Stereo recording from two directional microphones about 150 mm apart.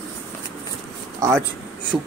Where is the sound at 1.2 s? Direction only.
15° right (ahead or behind).